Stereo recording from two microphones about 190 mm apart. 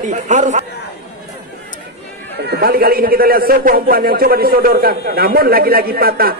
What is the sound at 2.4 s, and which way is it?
A man's voice, 55° right (ahead or behind).